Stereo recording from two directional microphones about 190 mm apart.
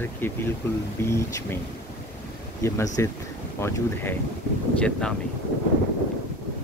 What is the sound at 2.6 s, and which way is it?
Speech, 15° left (ahead or behind).